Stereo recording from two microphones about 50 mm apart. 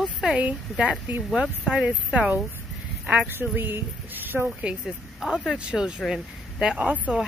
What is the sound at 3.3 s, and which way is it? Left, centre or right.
Speech, right.